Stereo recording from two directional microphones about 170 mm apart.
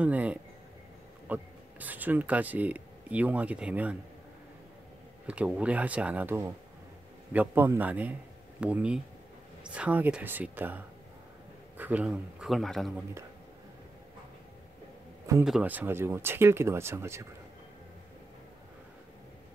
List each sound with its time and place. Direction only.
0.0 s speech: 10° right (ahead or behind)
5.2 s a man's voice: 5° right (ahead or behind)
15.4 s speech: 5° right (ahead or behind)